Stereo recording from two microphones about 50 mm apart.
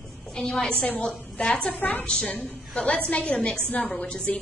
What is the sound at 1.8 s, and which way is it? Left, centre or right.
Speech, left.